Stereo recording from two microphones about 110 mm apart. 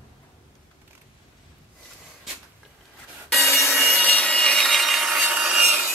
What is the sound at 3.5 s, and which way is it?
Wood, centre (ahead or behind).